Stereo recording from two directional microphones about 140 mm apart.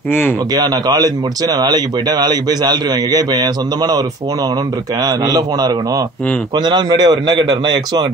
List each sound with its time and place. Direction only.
0.5 s speech: 30° right (ahead or behind)
5.0 s speech: 25° right (ahead or behind)